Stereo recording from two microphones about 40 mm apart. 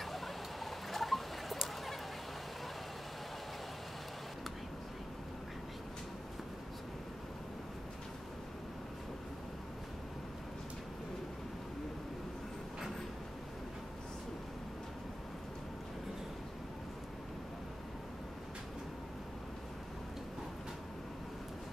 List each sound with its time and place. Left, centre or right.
0.7 s fowl: centre